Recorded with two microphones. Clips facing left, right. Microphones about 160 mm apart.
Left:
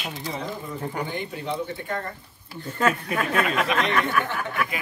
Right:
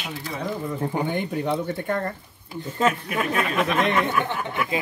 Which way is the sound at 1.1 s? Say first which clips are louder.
Right 5 dB; 55° right (ahead or behind).